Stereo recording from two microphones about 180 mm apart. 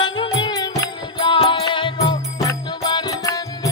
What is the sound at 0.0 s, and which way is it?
Music, 25° left (ahead or behind).